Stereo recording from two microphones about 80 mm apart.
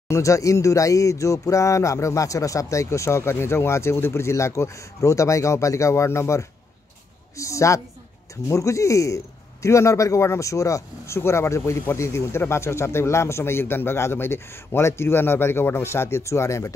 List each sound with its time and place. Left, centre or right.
0.1 s speech: left